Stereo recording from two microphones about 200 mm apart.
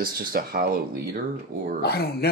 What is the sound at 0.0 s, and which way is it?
Speech, 50° right (ahead or behind).